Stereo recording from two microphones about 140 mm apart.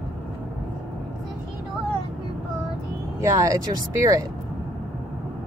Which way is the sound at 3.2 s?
20° right (ahead or behind).